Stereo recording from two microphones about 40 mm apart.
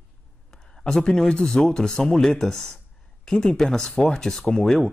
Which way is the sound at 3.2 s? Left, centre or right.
Centre.